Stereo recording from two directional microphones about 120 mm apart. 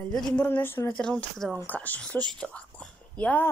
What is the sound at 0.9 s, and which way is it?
Speech, 5° left (ahead or behind).